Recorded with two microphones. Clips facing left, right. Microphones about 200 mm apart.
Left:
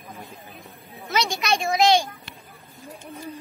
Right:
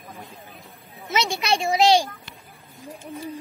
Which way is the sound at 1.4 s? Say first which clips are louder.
Right 1 dB; 30° right (ahead or behind).